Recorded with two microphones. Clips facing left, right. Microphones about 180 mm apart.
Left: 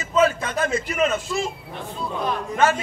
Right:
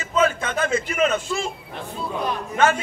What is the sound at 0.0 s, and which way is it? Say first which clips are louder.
A man's voice: left 1 dB; 35° left (ahead or behind).